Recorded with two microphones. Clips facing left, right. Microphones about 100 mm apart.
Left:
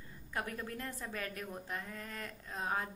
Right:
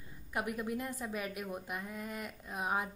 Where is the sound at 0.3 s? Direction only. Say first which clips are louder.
Right 4 dB; 15° right (ahead or behind).